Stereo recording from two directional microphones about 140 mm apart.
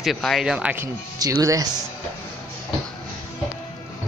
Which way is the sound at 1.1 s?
25° right (ahead or behind).